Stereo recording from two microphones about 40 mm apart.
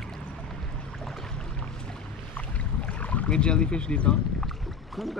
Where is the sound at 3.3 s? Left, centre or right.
Left.